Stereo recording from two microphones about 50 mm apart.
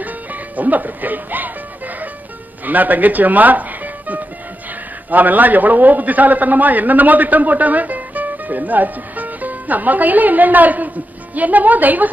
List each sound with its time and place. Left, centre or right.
0.0 s music: right
2.6 s a man's voice: right